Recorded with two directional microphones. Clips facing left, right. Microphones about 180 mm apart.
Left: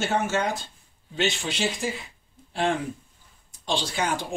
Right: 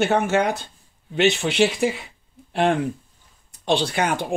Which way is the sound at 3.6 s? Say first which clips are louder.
Right 6 dB; 60° right (ahead or behind).